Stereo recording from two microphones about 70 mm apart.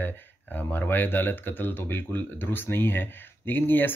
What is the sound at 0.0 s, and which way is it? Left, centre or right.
Speech, left.